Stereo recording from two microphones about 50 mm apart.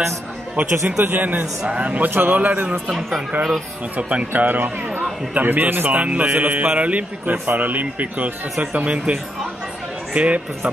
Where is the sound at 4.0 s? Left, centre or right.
Right.